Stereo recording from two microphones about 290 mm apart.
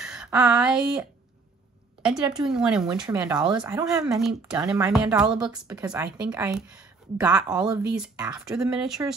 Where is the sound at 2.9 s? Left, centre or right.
Centre.